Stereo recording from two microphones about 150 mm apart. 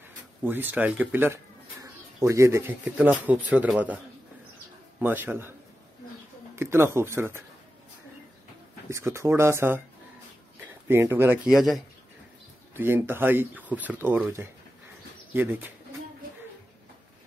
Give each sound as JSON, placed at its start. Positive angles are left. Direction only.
{"t": 0.4, "sound": "speech", "side_deg": -15}
{"t": 4.9, "sound": "speech", "side_deg": -15}
{"t": 6.5, "sound": "speech", "side_deg": -15}
{"t": 8.9, "sound": "speech", "side_deg": -20}
{"t": 12.7, "sound": "speech", "side_deg": -15}